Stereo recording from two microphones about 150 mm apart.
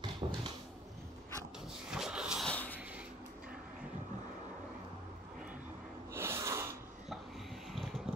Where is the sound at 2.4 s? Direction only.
10° left (ahead or behind).